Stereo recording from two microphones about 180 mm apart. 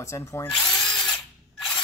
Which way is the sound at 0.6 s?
5° left (ahead or behind).